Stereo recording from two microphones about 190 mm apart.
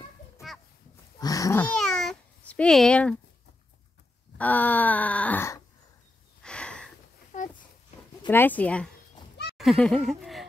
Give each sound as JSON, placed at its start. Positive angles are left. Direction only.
{"t": 1.2, "sound": "babbling", "side_deg": 20}
{"t": 4.4, "sound": "groan", "side_deg": 10}
{"t": 6.4, "sound": "a sound", "side_deg": 5}
{"t": 7.3, "sound": "a sound", "side_deg": 40}
{"t": 8.3, "sound": "groan", "side_deg": 10}
{"t": 9.6, "sound": "laughter", "side_deg": 0}